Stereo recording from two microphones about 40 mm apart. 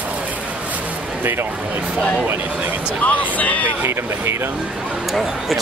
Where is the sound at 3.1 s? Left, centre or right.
Left.